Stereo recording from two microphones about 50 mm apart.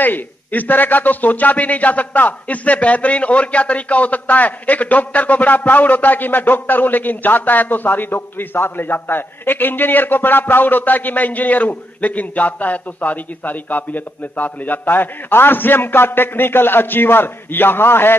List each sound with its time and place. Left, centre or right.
0.0 s a man's voice: left